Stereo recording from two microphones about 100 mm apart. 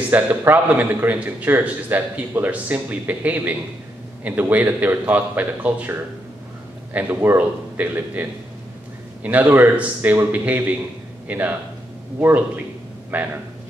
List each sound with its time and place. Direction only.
0.1 s a man's voice: 20° right (ahead or behind)